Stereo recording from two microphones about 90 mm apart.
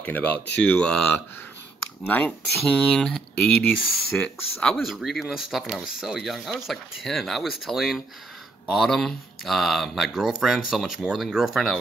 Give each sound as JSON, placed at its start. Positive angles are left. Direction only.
{"t": 0.0, "sound": "speech", "side_deg": 20}
{"t": 2.5, "sound": "speech", "side_deg": 5}
{"t": 4.7, "sound": "speech", "side_deg": 0}